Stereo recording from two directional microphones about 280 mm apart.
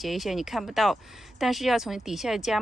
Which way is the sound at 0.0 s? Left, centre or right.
Centre.